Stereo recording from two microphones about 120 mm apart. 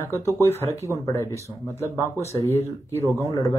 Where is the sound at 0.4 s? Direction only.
20° left (ahead or behind).